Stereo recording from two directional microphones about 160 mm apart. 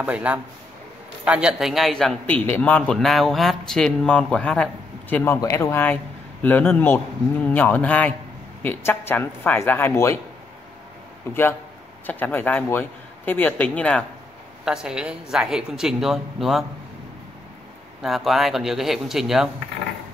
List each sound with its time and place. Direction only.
0.0 s a man's voice: 10° right (ahead or behind)
5.1 s a man's voice: 15° left (ahead or behind)
12.1 s a man's voice: 10° left (ahead or behind)
14.6 s a man's voice: 5° right (ahead or behind)
18.0 s a man's voice: centre (ahead or behind)